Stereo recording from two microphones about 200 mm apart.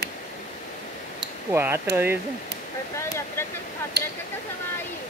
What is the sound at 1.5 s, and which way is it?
Speech, 10° right (ahead or behind).